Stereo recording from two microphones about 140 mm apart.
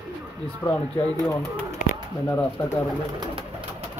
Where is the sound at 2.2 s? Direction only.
15° left (ahead or behind).